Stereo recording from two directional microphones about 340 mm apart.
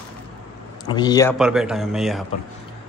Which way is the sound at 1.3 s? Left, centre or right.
Centre.